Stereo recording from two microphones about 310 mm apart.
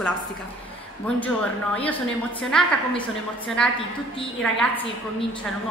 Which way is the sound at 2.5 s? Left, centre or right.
Centre.